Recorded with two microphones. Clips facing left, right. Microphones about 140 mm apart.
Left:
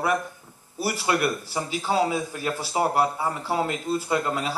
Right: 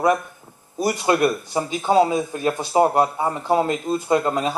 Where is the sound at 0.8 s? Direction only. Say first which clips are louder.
Right 6 dB; 20° right (ahead or behind).